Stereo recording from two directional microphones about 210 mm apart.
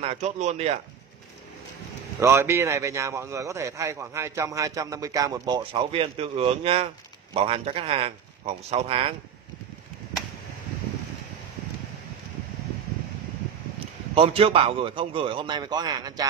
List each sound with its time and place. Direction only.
0.0 s speech: 30° right (ahead or behind)
2.1 s a man's voice: 10° right (ahead or behind)
14.1 s a man's voice: 25° right (ahead or behind)